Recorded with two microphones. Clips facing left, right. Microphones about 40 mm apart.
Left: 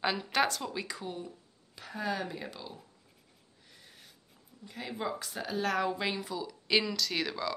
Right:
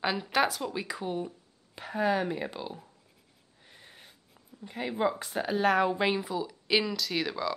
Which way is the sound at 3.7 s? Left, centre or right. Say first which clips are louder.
Right 4 dB; right.